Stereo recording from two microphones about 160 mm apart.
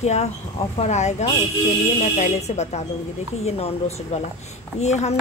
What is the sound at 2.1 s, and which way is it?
Speech, 45° left (ahead or behind).